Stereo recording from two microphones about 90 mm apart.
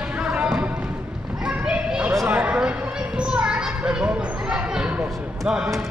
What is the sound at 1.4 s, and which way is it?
Children playing, 10° right (ahead or behind).